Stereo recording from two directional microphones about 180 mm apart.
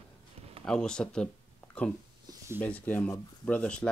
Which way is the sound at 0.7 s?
5° left (ahead or behind).